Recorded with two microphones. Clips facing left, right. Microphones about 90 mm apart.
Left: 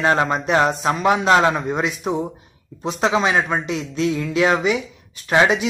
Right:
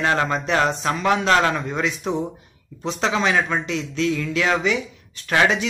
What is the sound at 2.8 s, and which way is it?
Speech, 15° left (ahead or behind).